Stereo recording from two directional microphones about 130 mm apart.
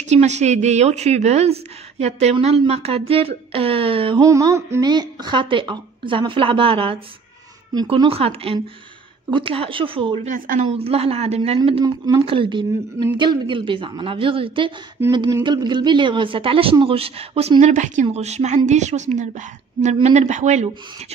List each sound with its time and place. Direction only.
0.1 s a woman's voice: 60° right (ahead or behind); by 4.2 s 45° right (ahead or behind)
4.2 s a sound: 25° right (ahead or behind)
4.9 s speech: 35° right (ahead or behind)
8.1 s speech: 50° right (ahead or behind)
10.2 s speech: 90° right
10.8 s speech: 50° right (ahead or behind); by 18.0 s 70° right (ahead or behind)
18.1 s a woman's voice: 60° right (ahead or behind)